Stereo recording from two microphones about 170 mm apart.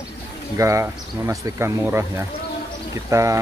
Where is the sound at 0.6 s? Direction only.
15° right (ahead or behind).